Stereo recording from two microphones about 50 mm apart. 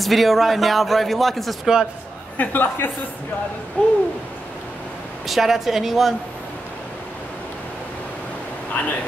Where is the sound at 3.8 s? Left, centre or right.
Left.